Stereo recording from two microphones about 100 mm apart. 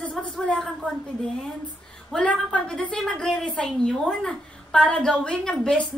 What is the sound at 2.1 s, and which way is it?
A woman's voice, 10° left (ahead or behind).